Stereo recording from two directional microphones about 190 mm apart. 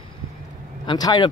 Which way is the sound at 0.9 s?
20° left (ahead or behind).